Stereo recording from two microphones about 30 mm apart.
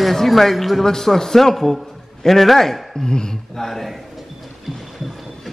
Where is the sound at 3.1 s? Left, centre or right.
Left.